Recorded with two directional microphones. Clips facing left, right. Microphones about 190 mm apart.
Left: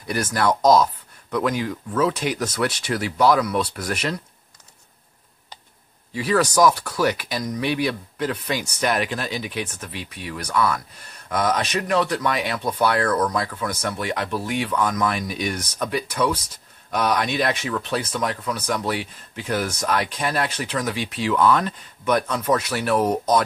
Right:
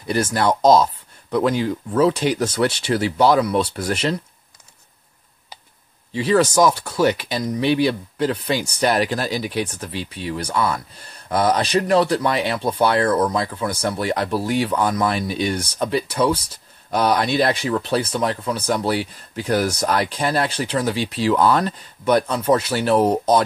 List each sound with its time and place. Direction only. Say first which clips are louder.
0.0 s speech: right 3 dB; 25° right (ahead or behind)
6.1 s speech: right 3 dB; 25° right (ahead or behind)